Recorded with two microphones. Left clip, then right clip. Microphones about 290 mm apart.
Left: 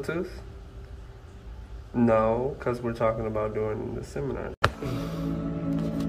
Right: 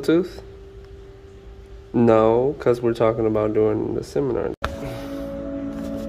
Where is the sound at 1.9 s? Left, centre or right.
Right.